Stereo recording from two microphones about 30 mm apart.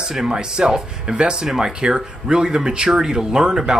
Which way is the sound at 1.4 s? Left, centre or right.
Centre.